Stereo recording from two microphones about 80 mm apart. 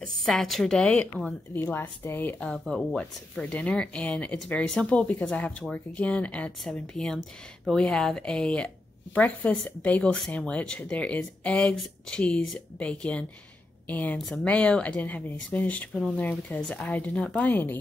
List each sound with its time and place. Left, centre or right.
0.0 s a woman's voice: centre
0.7 s speech: centre
1.5 s speech: left
2.4 s speech: centre; by 17.7 s left